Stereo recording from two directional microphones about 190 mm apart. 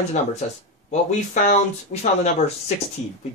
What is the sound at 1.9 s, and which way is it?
Speech, 40° left (ahead or behind).